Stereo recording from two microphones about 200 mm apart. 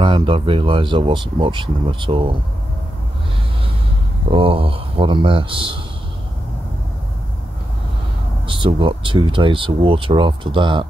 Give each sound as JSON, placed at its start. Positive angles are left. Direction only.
{"t": 0.0, "sound": "speech", "side_deg": -25}
{"t": 4.3, "sound": "speech", "side_deg": -25}
{"t": 8.5, "sound": "speech", "side_deg": -25}